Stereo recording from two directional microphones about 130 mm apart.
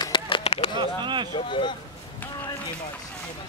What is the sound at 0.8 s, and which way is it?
Speech, 35° right (ahead or behind).